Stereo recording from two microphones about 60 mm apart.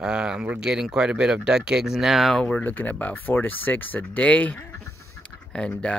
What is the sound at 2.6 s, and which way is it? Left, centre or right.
Speech, left.